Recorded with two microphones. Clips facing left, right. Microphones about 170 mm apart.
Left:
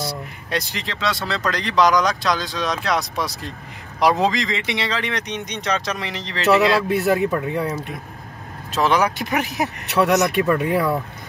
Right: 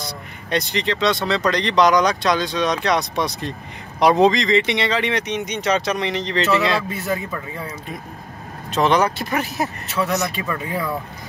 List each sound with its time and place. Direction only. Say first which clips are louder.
0.5 s speech: right 5 dB; centre (ahead or behind)
6.9 s speech: left 7 dB; 70° left (ahead or behind)
8.7 s speech: right 1 dB; 5° left (ahead or behind)
9.2 s speech: even; 15° left (ahead or behind)
9.8 s speech: left 7 dB; 70° left (ahead or behind)